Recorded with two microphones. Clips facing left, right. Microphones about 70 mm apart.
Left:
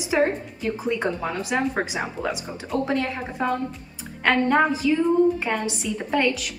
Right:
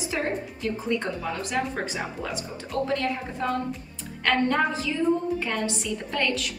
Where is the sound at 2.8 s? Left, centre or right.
Centre.